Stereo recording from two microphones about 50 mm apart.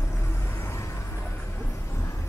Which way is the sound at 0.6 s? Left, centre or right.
Left.